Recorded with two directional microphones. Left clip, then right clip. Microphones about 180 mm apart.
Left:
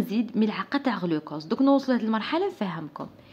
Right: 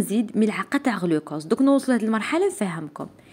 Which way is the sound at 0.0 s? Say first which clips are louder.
Right 4 dB; 20° right (ahead or behind).